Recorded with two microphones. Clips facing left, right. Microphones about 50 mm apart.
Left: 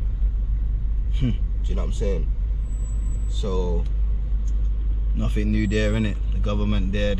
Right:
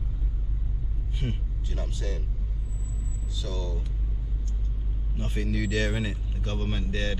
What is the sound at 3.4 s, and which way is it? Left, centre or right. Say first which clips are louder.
Speech: left 9 dB; left.